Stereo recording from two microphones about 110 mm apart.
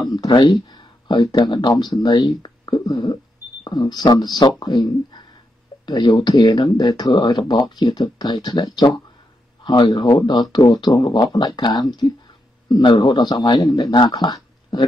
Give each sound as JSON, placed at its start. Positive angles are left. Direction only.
{"t": 0.1, "sound": "speech", "side_deg": 40}